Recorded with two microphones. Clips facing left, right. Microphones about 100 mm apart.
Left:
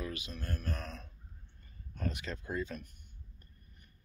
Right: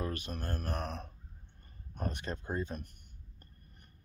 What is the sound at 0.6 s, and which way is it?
Speech, 60° right (ahead or behind).